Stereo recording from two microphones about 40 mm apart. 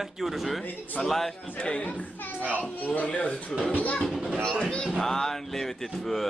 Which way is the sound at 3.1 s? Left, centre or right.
Left.